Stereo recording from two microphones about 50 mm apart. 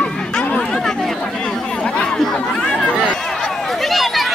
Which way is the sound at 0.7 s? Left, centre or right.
Centre.